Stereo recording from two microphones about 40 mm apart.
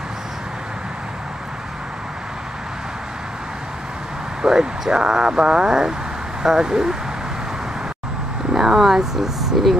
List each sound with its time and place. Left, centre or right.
4.4 s speech: centre
8.5 s speech: centre